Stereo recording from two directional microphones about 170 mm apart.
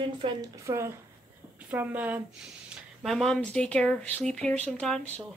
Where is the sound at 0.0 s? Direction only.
30° right (ahead or behind); by 2.2 s 10° right (ahead or behind).